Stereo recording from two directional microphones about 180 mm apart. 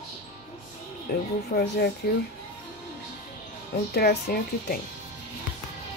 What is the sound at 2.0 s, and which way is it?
Speech, 60° left (ahead or behind).